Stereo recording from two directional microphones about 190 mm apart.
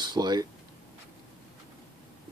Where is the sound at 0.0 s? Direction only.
20° right (ahead or behind).